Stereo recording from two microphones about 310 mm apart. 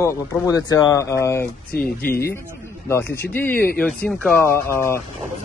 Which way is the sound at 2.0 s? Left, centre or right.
Left.